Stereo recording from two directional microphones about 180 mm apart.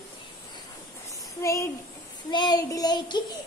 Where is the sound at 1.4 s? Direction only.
15° left (ahead or behind).